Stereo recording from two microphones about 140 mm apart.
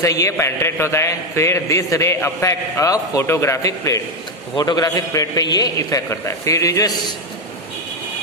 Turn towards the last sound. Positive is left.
turn(degrees=20)  # may be behind; listen again after turning